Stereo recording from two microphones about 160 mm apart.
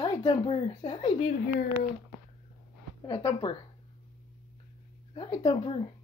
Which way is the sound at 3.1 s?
30° left (ahead or behind).